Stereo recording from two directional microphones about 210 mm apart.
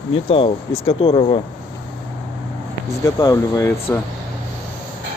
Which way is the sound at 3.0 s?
15° left (ahead or behind).